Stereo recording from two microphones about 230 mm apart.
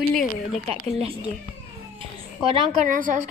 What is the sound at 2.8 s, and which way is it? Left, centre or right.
Speech, right.